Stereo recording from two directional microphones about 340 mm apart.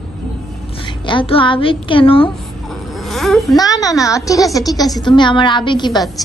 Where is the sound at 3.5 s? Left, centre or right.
Centre.